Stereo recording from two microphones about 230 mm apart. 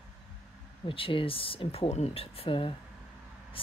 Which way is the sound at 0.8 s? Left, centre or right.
Left.